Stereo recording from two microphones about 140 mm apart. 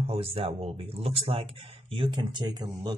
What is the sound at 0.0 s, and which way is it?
Speech, 45° right (ahead or behind).